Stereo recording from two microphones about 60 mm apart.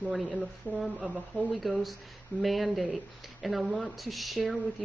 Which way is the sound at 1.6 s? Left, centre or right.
Centre.